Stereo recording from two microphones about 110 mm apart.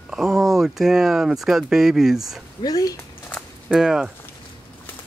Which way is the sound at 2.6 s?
35° left (ahead or behind).